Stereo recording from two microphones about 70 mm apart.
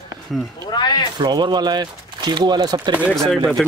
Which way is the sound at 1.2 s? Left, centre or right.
Right.